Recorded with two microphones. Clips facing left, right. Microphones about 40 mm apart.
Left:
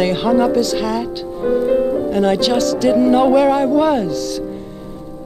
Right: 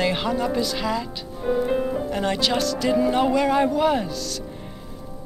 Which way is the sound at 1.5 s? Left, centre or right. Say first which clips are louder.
Left 7 dB; centre.